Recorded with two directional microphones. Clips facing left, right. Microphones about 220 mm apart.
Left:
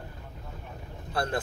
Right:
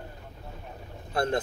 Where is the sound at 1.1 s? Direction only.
25° right (ahead or behind).